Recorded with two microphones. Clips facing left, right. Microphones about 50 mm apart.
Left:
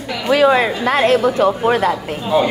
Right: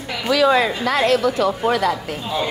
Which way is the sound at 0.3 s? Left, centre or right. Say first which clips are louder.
Left 3 dB; left.